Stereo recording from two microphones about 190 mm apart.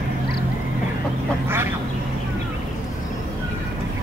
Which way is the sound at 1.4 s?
10° right (ahead or behind).